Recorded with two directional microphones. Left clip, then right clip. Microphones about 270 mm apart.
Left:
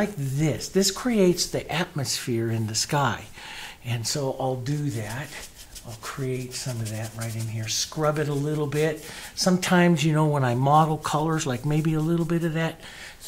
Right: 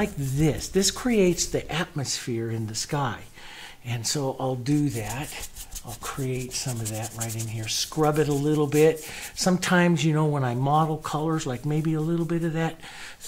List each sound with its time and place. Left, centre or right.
0.0 s speech: right; by 3.2 s centre
3.9 s speech: right
6.0 s rub: right
9.4 s speech: right